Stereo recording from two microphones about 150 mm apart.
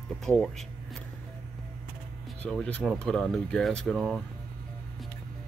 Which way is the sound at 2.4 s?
10° left (ahead or behind).